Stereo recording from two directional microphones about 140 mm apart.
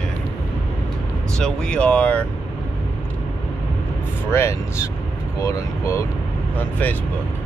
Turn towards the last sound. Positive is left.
turn(degrees=10)  # may be behind; listen again after turning